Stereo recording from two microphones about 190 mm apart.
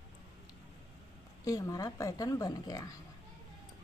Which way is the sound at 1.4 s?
15° left (ahead or behind).